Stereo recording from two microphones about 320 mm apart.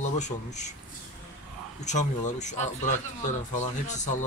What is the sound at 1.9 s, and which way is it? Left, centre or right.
Speech, left.